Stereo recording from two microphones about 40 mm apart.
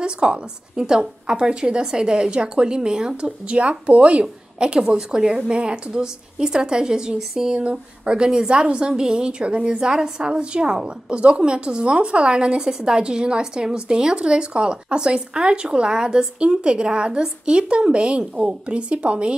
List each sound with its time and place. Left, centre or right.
0.0 s a woman's voice: right